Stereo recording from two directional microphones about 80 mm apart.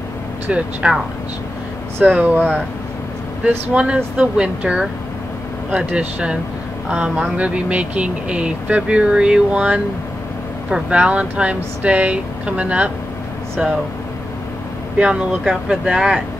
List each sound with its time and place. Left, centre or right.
0.5 s speech: centre
2.0 s speech: centre
3.4 s speech: centre
15.0 s speech: centre